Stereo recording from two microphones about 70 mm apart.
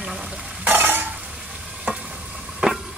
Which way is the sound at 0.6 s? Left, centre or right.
Right.